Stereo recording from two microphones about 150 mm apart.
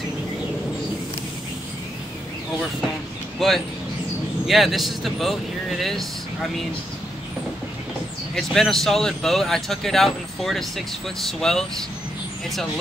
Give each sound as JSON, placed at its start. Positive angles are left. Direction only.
{"t": 3.3, "sound": "speech", "side_deg": 0}
{"t": 8.4, "sound": "speech", "side_deg": 0}